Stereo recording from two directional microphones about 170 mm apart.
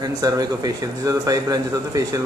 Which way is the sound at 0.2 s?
20° right (ahead or behind).